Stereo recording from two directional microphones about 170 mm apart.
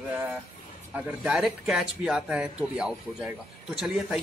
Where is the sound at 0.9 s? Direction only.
5° right (ahead or behind).